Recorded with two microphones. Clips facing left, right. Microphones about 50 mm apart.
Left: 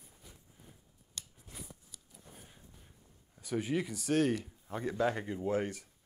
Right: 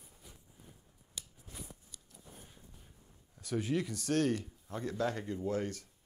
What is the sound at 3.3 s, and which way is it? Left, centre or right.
Speech, centre.